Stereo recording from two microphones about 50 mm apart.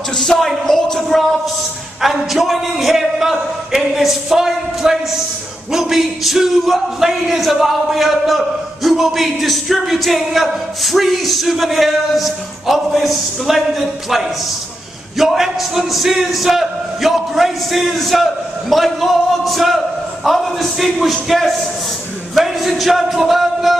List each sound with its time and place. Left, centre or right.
0.1 s a sound: centre
1.0 s speech: centre
22.3 s music: centre